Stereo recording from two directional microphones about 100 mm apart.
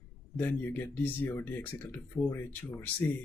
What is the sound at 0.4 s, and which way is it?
Speech, 20° left (ahead or behind).